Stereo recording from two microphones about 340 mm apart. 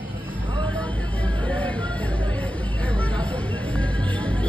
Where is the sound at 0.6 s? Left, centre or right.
Centre.